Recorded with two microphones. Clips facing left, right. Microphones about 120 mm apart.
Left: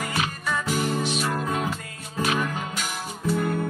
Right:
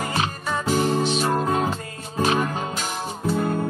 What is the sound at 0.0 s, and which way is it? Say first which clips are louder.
Music: right 3 dB; 30° right (ahead or behind).